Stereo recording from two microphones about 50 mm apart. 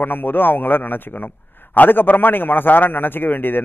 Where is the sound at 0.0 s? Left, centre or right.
Left.